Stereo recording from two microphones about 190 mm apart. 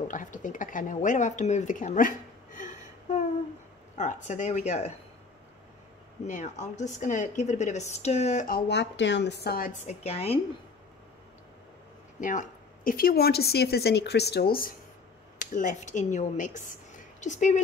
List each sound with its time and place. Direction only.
0.1 s a woman's voice: 45° left (ahead or behind)
6.2 s a woman's voice: 40° left (ahead or behind)
8.5 s a woman's voice: 60° left (ahead or behind)
9.8 s a woman's voice: 35° left (ahead or behind)
12.2 s a woman's voice: 45° left (ahead or behind)
15.3 s a woman's voice: 40° left (ahead or behind)